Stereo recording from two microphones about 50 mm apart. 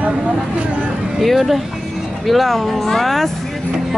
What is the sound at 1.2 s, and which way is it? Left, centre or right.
Speech, centre.